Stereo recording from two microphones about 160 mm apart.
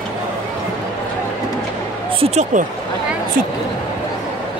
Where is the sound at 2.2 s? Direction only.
45° right (ahead or behind).